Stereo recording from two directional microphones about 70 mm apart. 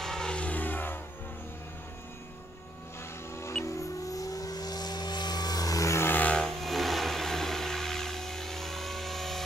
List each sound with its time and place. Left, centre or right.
0.0 s vehicle: centre; by 0.9 s left
3.6 s vehicle: left
6.0 s vehicle: left
6.3 s a sound: centre